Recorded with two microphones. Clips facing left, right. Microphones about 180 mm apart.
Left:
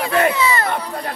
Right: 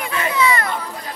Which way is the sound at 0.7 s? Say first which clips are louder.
Left 4 dB; 65° left (ahead or behind).